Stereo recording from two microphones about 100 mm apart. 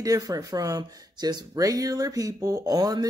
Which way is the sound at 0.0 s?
35° right (ahead or behind).